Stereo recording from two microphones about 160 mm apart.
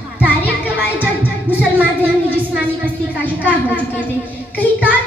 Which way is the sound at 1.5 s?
10° right (ahead or behind).